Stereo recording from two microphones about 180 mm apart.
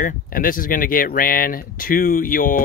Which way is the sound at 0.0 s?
50° left (ahead or behind).